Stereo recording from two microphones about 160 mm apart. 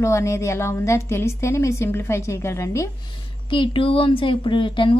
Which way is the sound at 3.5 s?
30° left (ahead or behind).